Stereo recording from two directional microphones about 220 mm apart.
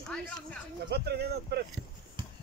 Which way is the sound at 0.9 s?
50° right (ahead or behind).